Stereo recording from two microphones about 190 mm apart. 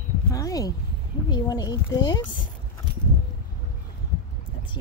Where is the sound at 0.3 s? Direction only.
20° left (ahead or behind).